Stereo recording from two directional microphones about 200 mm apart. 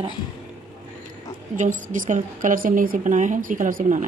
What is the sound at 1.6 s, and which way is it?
A woman's voice, 40° right (ahead or behind).